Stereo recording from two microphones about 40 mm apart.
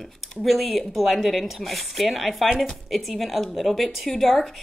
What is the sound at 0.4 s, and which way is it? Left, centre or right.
A woman's voice, centre.